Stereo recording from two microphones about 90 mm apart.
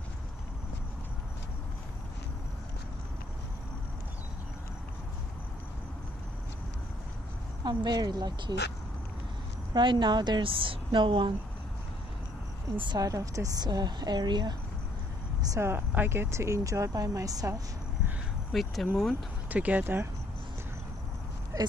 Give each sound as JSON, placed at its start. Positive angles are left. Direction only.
{"t": 7.6, "sound": "a woman's voice", "side_deg": -50}
{"t": 9.8, "sound": "a woman's voice", "side_deg": -60}
{"t": 12.7, "sound": "a woman's voice", "side_deg": -60}
{"t": 13.0, "sound": "a woman's voice", "side_deg": -40}
{"t": 15.6, "sound": "speech", "side_deg": -25}
{"t": 18.5, "sound": "speech", "side_deg": 0}
{"t": 19.5, "sound": "speech", "side_deg": -15}
{"t": 21.5, "sound": "a sound", "side_deg": -40}